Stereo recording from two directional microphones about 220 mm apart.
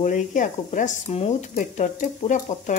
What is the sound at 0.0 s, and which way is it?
Speech, 35° left (ahead or behind).